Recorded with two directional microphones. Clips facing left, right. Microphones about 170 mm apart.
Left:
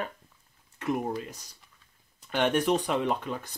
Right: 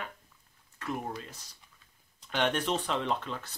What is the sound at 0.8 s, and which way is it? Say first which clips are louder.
Speech: left 6 dB; 20° left (ahead or behind).